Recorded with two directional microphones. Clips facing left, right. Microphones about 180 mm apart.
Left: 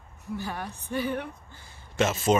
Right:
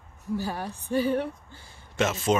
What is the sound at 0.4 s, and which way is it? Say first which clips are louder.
Speech: right 3 dB; 35° right (ahead or behind).